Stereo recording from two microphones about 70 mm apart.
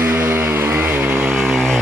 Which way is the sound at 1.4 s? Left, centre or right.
Centre.